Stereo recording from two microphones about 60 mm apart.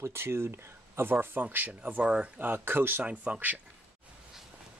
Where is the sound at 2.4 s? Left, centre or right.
Right.